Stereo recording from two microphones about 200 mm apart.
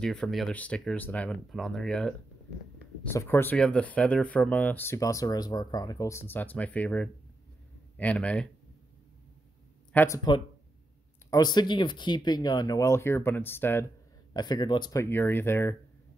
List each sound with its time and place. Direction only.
0.0 s speech: centre (ahead or behind)
9.9 s speech: 15° left (ahead or behind)